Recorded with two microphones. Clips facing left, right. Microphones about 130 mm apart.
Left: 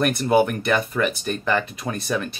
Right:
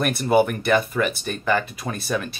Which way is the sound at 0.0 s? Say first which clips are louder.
Even; centre (ahead or behind).